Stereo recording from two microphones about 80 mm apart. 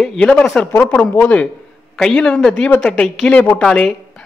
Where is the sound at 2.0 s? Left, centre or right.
Centre.